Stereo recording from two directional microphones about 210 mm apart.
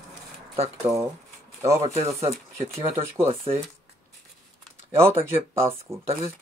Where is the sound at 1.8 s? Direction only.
30° right (ahead or behind).